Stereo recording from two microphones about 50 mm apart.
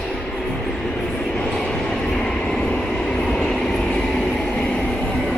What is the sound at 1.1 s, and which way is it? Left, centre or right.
Vehicle, centre.